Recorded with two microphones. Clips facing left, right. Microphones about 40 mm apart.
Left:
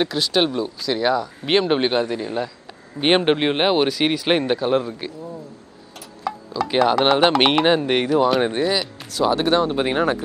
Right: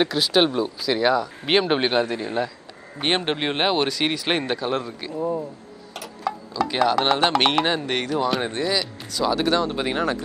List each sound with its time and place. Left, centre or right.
0.0 s speech: centre
3.0 s speech: centre
5.1 s speech: right
6.3 s a sound: centre
7.0 s speech: centre